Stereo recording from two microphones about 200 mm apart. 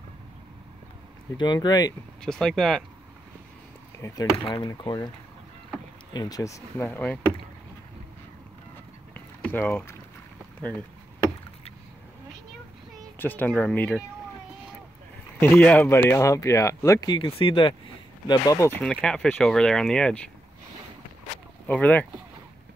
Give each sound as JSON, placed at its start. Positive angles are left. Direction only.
{"t": 1.3, "sound": "speech", "side_deg": 20}
{"t": 2.2, "sound": "speech", "side_deg": 5}
{"t": 4.0, "sound": "speech", "side_deg": 20}
{"t": 6.1, "sound": "speech", "side_deg": 20}
{"t": 9.1, "sound": "boat", "side_deg": 10}
{"t": 13.2, "sound": "speech", "side_deg": 10}
{"t": 15.3, "sound": "speech", "side_deg": 10}
{"t": 21.6, "sound": "speech", "side_deg": 10}